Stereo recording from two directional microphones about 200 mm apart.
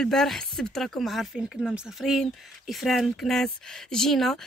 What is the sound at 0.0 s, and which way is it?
Speech, centre (ahead or behind).